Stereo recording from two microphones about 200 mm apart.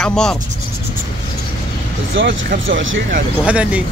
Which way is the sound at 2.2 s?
70° right (ahead or behind).